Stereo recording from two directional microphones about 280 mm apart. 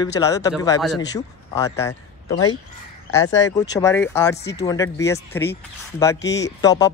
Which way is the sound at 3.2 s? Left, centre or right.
Left.